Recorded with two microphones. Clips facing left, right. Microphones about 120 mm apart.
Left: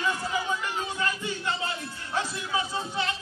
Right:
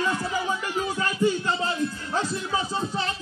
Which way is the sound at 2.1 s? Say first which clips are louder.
Left 1 dB; 35° right (ahead or behind).